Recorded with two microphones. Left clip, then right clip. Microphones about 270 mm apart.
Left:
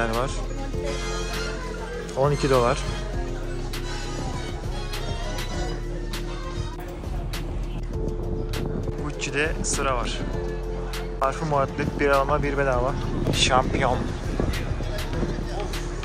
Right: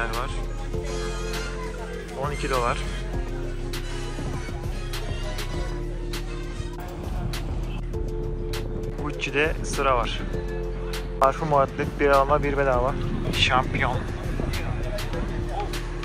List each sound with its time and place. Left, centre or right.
2.2 s speech: centre
9.0 s speech: centre
11.1 s speech: centre